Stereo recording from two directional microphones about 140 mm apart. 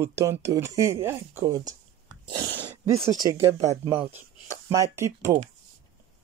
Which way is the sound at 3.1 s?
20° right (ahead or behind).